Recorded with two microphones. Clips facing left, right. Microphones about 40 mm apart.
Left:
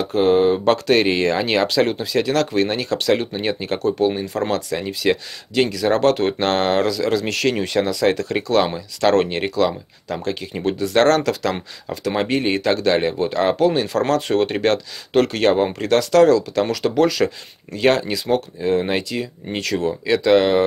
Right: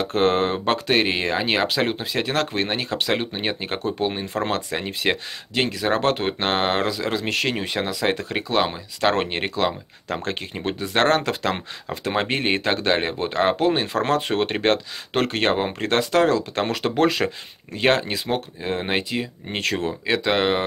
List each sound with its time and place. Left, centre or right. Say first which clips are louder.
0.1 s speech: left 6 dB; right
0.7 s speech: left 4 dB; centre
10.0 s speech: left 2 dB; right
10.6 s speech: left 5 dB; right